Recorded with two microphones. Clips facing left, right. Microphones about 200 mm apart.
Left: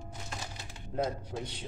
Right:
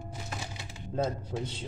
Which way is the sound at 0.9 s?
25° right (ahead or behind).